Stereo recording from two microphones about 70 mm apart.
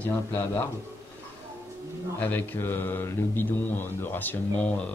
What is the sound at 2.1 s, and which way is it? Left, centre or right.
Speech, left.